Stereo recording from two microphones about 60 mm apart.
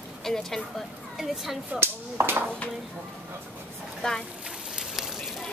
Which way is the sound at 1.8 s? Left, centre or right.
Right.